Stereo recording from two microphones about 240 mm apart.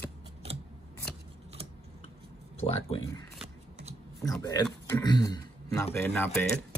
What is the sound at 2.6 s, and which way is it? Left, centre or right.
Speech, left.